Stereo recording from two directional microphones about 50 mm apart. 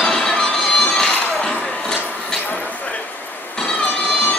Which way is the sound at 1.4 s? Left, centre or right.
Centre.